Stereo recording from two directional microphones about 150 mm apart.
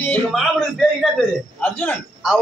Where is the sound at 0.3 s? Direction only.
Centre (ahead or behind).